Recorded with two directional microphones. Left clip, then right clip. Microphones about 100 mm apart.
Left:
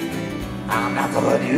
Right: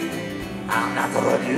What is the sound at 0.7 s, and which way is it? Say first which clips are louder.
Music: left 1 dB; 50° right (ahead or behind).